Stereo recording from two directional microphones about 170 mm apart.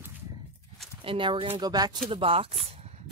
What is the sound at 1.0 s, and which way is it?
Speech, 30° right (ahead or behind).